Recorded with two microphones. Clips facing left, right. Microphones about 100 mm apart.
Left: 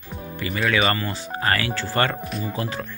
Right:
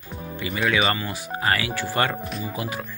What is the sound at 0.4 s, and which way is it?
Speech, 20° right (ahead or behind).